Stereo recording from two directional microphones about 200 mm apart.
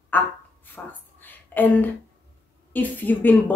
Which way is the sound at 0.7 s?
10° left (ahead or behind).